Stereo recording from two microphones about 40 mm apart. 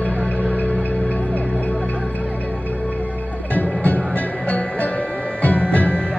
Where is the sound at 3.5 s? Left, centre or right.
Left.